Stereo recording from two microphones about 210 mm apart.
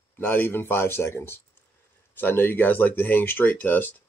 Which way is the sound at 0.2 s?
10° left (ahead or behind).